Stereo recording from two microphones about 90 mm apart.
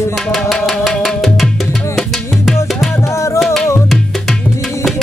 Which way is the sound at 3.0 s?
30° left (ahead or behind).